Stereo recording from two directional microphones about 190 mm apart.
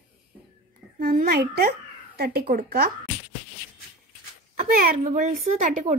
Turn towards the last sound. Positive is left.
turn(degrees=-45)  # may be behind; listen again after turning